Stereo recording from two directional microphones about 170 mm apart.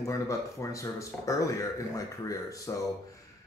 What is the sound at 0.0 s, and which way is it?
A man's voice, 20° left (ahead or behind).